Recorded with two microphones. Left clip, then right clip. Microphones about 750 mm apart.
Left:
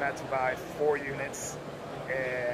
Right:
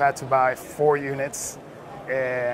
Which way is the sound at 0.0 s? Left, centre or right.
Right.